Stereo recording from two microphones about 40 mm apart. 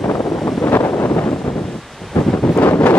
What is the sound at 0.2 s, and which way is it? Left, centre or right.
Vehicle, centre.